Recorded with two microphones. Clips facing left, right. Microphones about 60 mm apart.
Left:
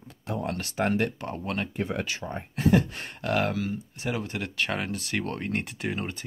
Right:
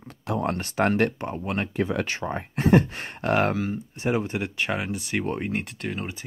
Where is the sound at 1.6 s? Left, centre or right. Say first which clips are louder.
Right 7 dB; right; by 5.5 s centre.